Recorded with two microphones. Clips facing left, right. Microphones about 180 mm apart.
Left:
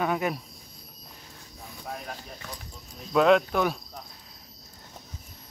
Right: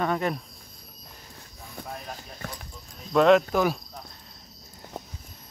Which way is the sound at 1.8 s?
55° right (ahead or behind).